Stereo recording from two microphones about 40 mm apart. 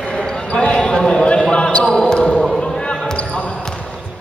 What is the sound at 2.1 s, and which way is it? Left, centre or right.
Basketball bounce, left.